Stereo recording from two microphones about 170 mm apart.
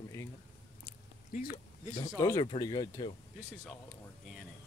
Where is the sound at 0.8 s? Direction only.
60° left (ahead or behind).